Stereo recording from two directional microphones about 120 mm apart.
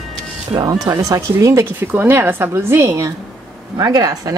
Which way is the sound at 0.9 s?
25° right (ahead or behind).